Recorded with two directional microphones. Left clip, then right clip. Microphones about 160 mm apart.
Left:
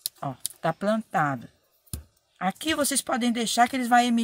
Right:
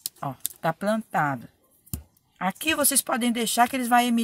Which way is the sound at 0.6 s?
5° right (ahead or behind).